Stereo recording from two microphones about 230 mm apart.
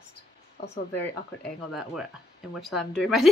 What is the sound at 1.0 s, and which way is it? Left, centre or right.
A woman's voice, centre.